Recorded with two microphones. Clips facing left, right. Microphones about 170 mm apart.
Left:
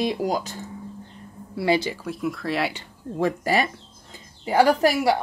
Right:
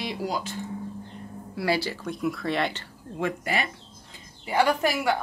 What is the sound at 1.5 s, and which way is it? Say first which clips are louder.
Speech: left 4 dB; 20° left (ahead or behind).